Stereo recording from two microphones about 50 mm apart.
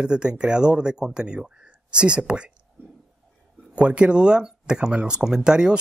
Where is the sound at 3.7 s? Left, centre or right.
Right.